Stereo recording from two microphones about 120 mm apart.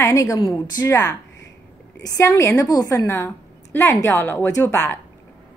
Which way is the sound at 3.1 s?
20° left (ahead or behind).